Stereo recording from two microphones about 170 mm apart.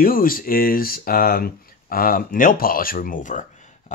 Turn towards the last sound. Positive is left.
turn(degrees=50)  # may be behind; listen again after turning